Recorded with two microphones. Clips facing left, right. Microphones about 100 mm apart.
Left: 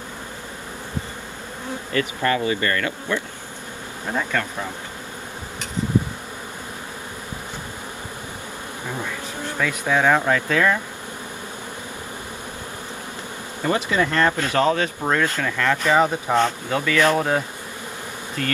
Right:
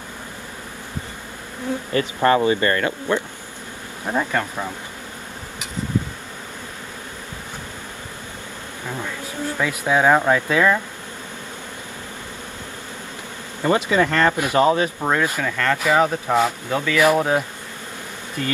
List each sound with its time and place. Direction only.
2.0 s speech: 30° right (ahead or behind)
4.1 s speech: 20° right (ahead or behind)
9.6 s speech: 15° right (ahead or behind)
13.7 s speech: 30° right (ahead or behind); by 15.4 s 10° right (ahead or behind)
15.4 s speech: centre (ahead or behind)